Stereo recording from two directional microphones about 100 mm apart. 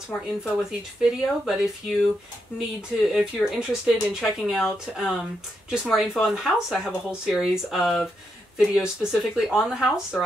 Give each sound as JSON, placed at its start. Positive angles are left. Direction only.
{"t": 0.4, "sound": "speech", "side_deg": -5}